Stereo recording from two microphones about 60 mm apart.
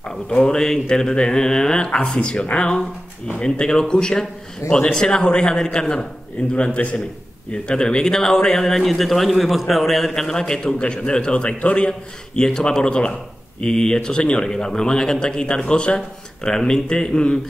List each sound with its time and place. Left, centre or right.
0.1 s a man's voice: centre